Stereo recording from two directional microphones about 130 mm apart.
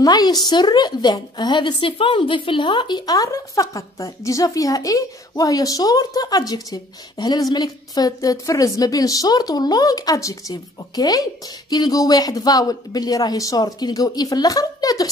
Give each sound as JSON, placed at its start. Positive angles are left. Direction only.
{"t": 0.0, "sound": "a woman's voice", "side_deg": 30}